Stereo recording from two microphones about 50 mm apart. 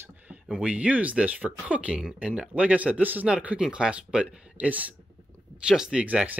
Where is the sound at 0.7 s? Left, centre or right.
Right.